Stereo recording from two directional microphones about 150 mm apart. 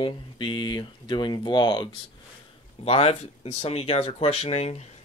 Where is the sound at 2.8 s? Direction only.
40° left (ahead or behind).